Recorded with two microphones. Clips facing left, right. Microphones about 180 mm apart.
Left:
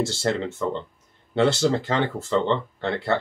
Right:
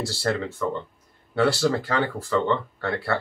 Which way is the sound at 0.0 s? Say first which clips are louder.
Left 2 dB; 25° left (ahead or behind).